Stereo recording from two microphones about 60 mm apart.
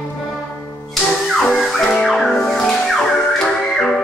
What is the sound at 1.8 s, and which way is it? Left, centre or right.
Music, centre.